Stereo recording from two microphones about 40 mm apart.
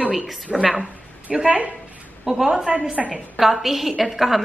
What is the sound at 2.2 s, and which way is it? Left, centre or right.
A woman's voice, centre.